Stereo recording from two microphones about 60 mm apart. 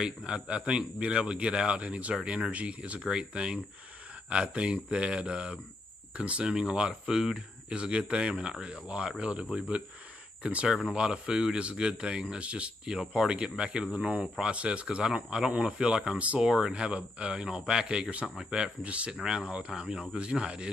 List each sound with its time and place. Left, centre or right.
0.0 s speech: centre